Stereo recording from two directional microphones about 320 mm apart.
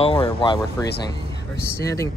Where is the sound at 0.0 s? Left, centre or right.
Centre.